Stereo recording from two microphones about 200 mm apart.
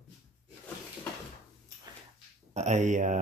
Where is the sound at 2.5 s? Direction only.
35° right (ahead or behind).